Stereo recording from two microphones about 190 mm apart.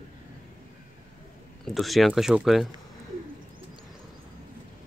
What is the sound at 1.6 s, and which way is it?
Speech, centre (ahead or behind).